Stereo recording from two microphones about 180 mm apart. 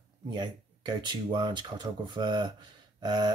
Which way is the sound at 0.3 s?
25° right (ahead or behind).